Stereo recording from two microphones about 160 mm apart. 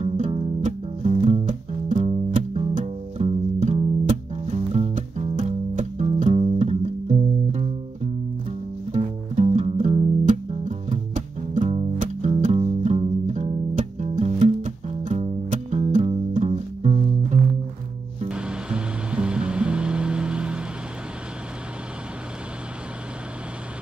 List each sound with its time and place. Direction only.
0.0 s music: 45° right (ahead or behind)
18.3 s music: 5° right (ahead or behind)